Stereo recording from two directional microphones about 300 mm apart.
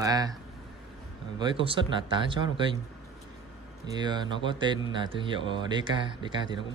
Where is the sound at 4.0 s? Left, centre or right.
Centre.